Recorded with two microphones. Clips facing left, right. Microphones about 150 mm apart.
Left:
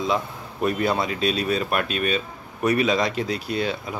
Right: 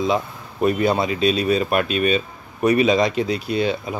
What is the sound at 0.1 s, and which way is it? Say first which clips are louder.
Speech: right 3 dB; 10° right (ahead or behind).